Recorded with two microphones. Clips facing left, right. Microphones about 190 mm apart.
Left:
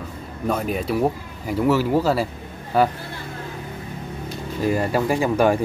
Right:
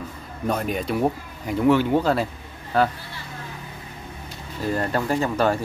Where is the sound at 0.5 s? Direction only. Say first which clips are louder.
Left 1 dB; 5° left (ahead or behind).